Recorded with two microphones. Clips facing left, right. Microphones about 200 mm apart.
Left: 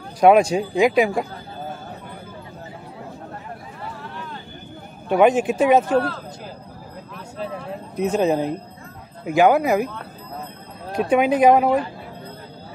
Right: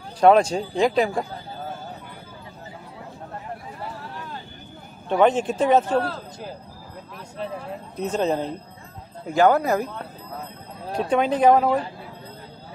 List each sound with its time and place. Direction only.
0.2 s a man's voice: 10° left (ahead or behind)
5.0 s a man's voice: 10° left (ahead or behind)
7.9 s a man's voice: 10° left (ahead or behind)
11.1 s a man's voice: 10° left (ahead or behind)